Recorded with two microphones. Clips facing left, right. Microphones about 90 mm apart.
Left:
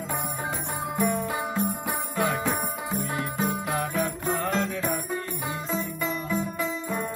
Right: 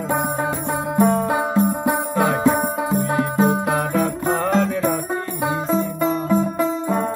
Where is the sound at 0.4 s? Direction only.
55° right (ahead or behind).